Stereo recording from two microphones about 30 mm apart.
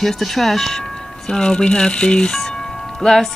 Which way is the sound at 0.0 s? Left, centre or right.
Centre.